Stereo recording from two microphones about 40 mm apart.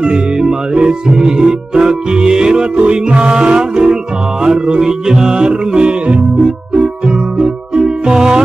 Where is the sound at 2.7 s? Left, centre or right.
Right.